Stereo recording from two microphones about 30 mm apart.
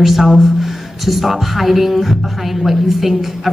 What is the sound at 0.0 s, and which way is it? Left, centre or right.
Speech, centre.